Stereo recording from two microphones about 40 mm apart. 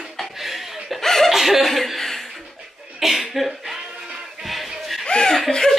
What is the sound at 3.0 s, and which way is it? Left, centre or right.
Cough, centre.